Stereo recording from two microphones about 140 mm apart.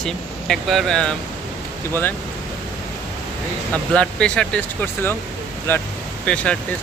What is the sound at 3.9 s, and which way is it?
Speech, 5° left (ahead or behind).